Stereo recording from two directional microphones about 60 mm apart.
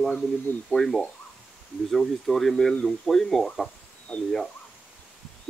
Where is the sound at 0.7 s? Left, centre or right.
Centre.